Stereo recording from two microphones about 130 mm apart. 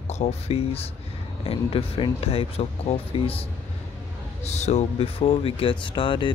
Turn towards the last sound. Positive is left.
turn(degrees=40)  # may be behind; listen again after turning